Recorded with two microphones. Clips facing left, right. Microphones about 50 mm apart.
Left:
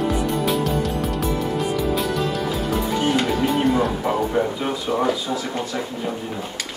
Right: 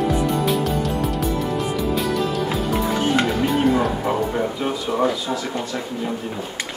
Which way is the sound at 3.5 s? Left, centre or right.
Centre.